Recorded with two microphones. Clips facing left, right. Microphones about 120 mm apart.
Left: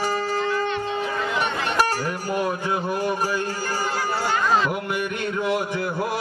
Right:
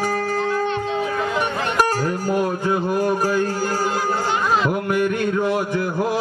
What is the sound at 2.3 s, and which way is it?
Speech, 45° right (ahead or behind).